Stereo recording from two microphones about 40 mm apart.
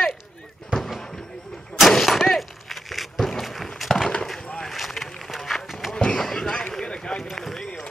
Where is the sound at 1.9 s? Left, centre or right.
Centre.